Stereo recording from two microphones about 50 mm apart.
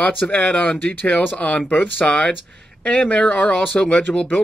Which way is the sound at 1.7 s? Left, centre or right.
Left.